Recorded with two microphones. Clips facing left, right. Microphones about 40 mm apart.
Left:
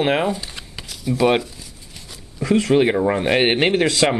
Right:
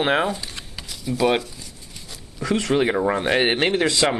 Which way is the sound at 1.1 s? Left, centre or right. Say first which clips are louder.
Left 3 dB; centre.